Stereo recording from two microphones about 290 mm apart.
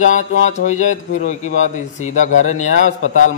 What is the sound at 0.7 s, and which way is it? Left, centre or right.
A man's voice, left.